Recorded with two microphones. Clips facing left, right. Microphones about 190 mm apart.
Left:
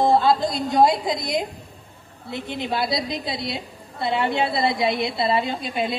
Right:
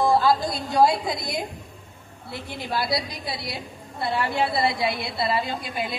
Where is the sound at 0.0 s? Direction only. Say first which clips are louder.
Left 2 dB; 20° left (ahead or behind).